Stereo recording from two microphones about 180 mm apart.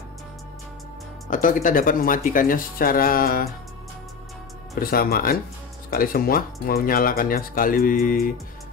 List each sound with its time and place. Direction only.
1.3 s speech: 50° left (ahead or behind)
4.7 s speech: 55° left (ahead or behind)